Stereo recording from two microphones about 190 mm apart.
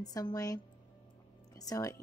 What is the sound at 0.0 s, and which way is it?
Speech, 20° left (ahead or behind).